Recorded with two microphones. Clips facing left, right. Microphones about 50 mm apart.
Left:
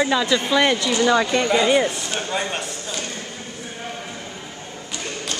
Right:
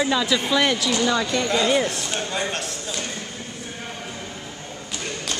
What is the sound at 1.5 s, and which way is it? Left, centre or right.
A man's voice, centre.